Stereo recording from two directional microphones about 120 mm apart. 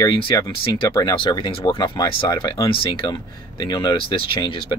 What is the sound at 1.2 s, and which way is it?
Speech, 45° left (ahead or behind).